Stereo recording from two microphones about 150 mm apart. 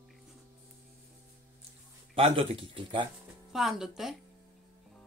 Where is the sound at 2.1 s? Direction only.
40° right (ahead or behind).